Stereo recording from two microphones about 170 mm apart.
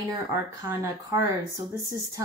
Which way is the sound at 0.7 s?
15° right (ahead or behind).